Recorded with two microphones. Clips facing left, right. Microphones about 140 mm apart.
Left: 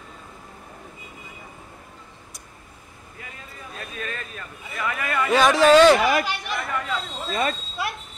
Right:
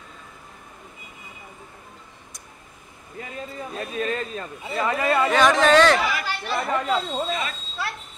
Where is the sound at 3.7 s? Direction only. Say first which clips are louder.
Right 7 dB; 30° right (ahead or behind).